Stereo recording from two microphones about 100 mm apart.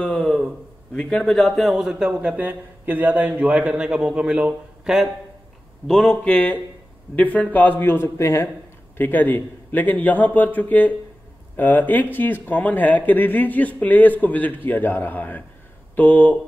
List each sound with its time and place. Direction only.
0.0 s a man's voice: 10° left (ahead or behind)